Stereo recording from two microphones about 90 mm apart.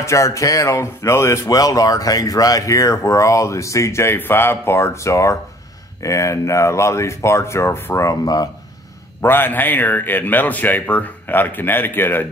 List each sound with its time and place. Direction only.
0.0 s speech: 35° left (ahead or behind)
9.2 s a man's voice: 25° left (ahead or behind)